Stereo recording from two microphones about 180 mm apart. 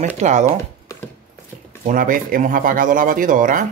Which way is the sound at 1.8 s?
50° right (ahead or behind).